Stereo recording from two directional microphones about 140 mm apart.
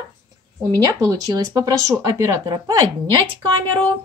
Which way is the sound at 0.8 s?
25° right (ahead or behind).